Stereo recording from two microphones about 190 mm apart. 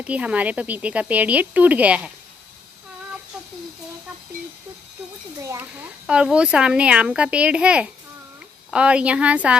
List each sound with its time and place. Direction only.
0.0 s speech: 5° right (ahead or behind)
5.4 s speech: 15° right (ahead or behind)
6.0 s a child's voice: 5° right (ahead or behind)